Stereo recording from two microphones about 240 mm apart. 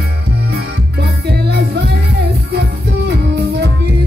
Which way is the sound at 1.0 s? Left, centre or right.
Right.